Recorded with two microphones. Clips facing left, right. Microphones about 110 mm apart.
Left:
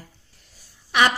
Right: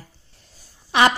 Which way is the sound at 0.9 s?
30° right (ahead or behind).